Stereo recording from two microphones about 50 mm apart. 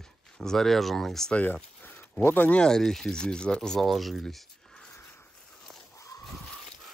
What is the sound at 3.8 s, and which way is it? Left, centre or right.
Speech, centre.